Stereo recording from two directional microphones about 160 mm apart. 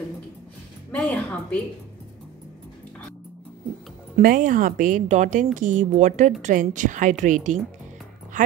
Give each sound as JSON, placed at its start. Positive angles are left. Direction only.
{"t": 0.9, "sound": "a woman's voice", "side_deg": 10}
{"t": 4.2, "sound": "speech", "side_deg": -60}